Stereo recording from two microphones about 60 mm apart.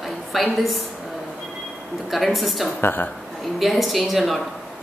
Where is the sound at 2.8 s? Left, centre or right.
Left.